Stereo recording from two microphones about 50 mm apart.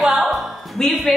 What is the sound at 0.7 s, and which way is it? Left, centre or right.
Speech, centre.